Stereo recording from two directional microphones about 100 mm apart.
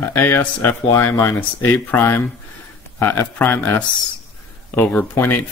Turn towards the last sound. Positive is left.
turn(degrees=20)  # may be behind; listen again after turning